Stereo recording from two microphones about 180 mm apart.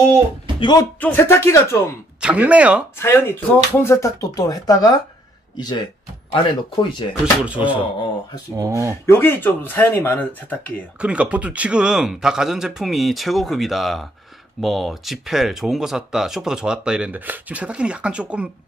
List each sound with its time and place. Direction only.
0.6 s a man's voice: 25° left (ahead or behind)
1.0 s speech: 10° left (ahead or behind)
2.1 s speech: 5° right (ahead or behind)
3.0 s speech: 10° left (ahead or behind); by 7.1 s 30° left (ahead or behind)
7.4 s speech: 5° right (ahead or behind)
9.0 s speech: 10° left (ahead or behind)
11.0 s speech: 5° right (ahead or behind)